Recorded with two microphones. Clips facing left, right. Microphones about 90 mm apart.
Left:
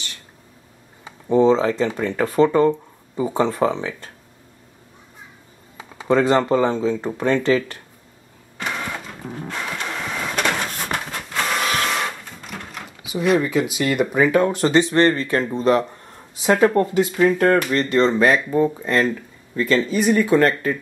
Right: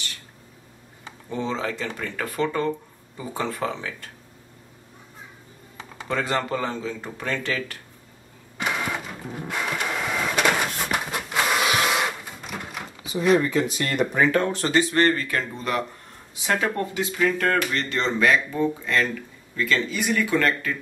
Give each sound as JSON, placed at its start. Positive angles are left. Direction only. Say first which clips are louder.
{"t": 1.3, "sound": "speech", "louder": "left 12 dB", "side_deg": 30}
{"t": 6.0, "sound": "speech", "louder": "left 9 dB", "side_deg": 25}
{"t": 8.5, "sound": "printer", "louder": "even", "side_deg": -5}
{"t": 13.2, "sound": "speech", "louder": "left 1 dB", "side_deg": 5}